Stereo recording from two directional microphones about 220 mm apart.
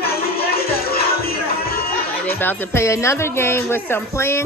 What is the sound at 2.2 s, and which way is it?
Speech, 10° left (ahead or behind).